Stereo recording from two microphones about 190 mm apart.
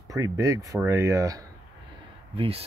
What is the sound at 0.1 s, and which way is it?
Speech, 20° right (ahead or behind).